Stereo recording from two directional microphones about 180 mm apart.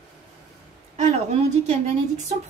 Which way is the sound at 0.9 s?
40° right (ahead or behind).